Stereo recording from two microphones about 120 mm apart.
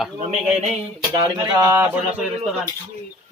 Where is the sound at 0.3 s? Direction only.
70° right (ahead or behind).